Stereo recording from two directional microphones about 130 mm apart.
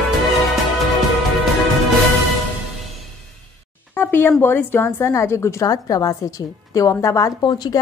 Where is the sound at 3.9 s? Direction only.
15° left (ahead or behind).